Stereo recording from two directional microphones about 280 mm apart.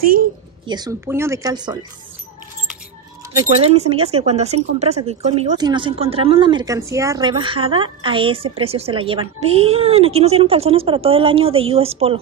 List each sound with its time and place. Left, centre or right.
0.0 s a sound: right
0.7 s speech: centre
3.4 s speech: right